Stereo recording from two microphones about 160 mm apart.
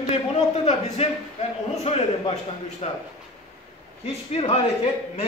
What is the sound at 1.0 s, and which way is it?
A man's voice, 40° left (ahead or behind).